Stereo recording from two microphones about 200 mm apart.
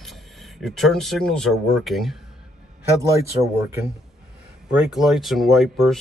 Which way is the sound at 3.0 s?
15° right (ahead or behind).